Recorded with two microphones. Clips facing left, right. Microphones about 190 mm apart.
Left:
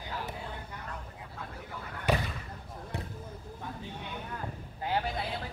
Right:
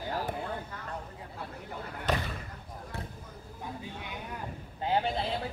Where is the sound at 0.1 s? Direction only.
45° right (ahead or behind).